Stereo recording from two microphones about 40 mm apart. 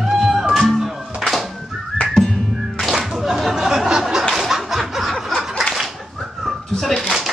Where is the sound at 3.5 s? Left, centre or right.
Centre.